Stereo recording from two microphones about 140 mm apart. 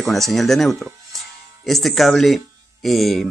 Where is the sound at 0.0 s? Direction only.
Centre (ahead or behind).